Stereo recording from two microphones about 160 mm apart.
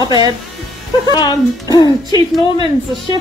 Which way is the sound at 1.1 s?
25° left (ahead or behind).